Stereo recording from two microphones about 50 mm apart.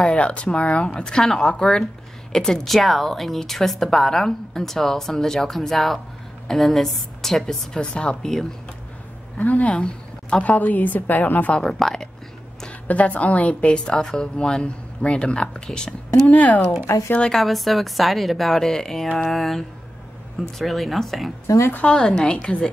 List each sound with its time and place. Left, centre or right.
0.0 s a woman's voice: left
9.4 s a woman's voice: left
9.7 s a woman's voice: centre
10.5 s a woman's voice: left
11.5 s speech: centre
12.8 s speech: left
13.8 s speech: centre
16.3 s a woman's voice: left
17.3 s a woman's voice: centre
21.5 s speech: left
21.9 s speech: centre